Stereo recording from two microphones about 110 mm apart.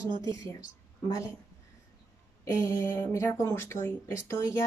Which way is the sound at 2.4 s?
30° left (ahead or behind).